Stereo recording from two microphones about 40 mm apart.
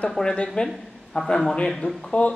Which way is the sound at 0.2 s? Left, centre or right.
Left.